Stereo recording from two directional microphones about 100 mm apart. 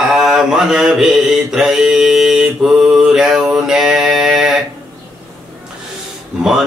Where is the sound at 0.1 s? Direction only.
5° right (ahead or behind).